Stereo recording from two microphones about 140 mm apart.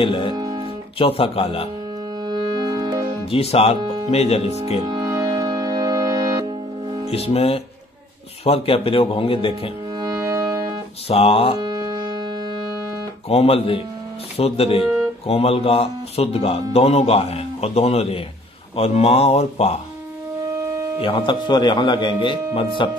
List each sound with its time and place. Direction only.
0.0 s speech: 40° left (ahead or behind)
0.3 s music: 30° right (ahead or behind)
0.9 s speech: 40° left (ahead or behind)
2.2 s organ: 30° right (ahead or behind)
3.3 s speech: 45° left (ahead or behind)
4.8 s music: 25° right (ahead or behind)
7.1 s speech: 45° left (ahead or behind)
9.9 s music: 25° right (ahead or behind)
11.1 s speech: 45° left (ahead or behind)
11.6 s music: 30° right (ahead or behind)
13.3 s speech: 45° left (ahead or behind)
20.6 s a sound: 20° right (ahead or behind)
21.0 s speech: 35° left (ahead or behind)